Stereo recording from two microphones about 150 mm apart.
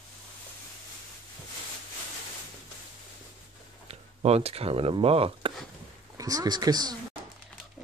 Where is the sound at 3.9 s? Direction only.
45° right (ahead or behind).